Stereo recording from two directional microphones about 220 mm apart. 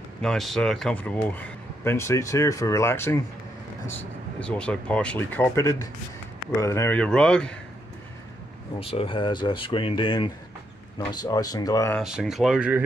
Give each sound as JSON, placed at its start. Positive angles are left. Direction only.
{"t": 0.2, "sound": "speech", "side_deg": 0}
{"t": 8.7, "sound": "speech", "side_deg": 25}
{"t": 12.0, "sound": "speech", "side_deg": -5}